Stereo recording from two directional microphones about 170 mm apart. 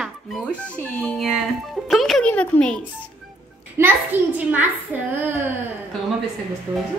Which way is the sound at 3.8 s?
10° right (ahead or behind).